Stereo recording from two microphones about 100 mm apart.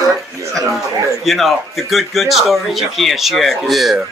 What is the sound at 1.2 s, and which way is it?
Speech, centre (ahead or behind).